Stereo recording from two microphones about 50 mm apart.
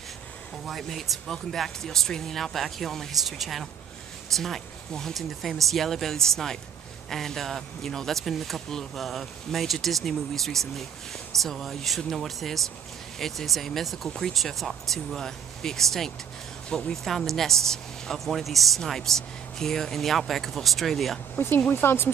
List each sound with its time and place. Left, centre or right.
0.7 s speech: centre
16.6 s speech: left
16.9 s speech: centre
21.4 s speech: left